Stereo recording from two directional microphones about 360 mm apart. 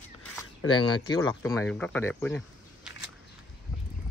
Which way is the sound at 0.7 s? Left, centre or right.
Centre.